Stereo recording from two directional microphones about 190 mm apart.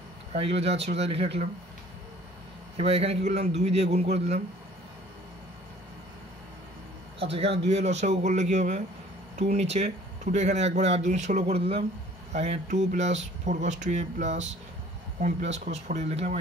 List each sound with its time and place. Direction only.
0.3 s speech: 30° right (ahead or behind)
2.8 s speech: 30° right (ahead or behind)
7.2 s speech: 30° right (ahead or behind)